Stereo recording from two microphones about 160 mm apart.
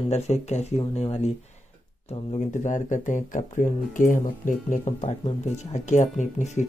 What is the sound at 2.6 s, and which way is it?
Speech, 50° left (ahead or behind).